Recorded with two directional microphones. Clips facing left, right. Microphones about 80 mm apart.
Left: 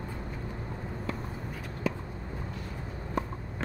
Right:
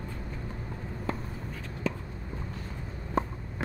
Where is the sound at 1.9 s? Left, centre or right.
Centre.